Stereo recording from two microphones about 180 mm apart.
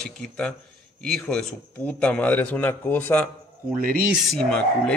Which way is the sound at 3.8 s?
55° right (ahead or behind).